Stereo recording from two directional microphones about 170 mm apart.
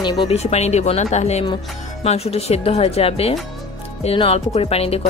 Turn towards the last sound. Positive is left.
turn(degrees=35)  # may be behind; listen again after turning